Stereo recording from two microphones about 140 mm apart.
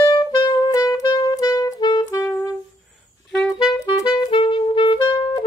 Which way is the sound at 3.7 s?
30° left (ahead or behind).